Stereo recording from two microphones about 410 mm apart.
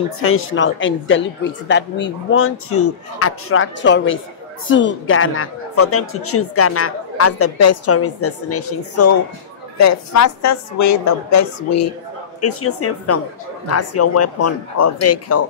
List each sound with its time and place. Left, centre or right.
0.2 s a woman's voice: left